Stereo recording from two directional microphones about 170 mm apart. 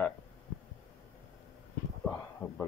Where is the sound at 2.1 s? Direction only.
15° left (ahead or behind).